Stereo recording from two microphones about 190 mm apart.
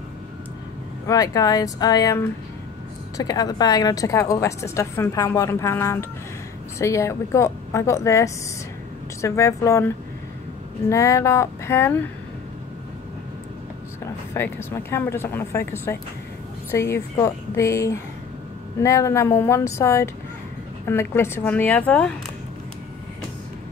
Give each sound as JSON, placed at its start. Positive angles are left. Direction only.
{"t": 1.0, "sound": "a woman's voice", "side_deg": 20}
{"t": 14.3, "sound": "a woman's voice", "side_deg": 10}